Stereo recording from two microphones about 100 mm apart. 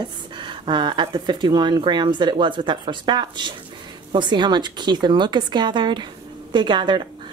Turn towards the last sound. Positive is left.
turn(degrees=-50)  # may be behind; listen again after turning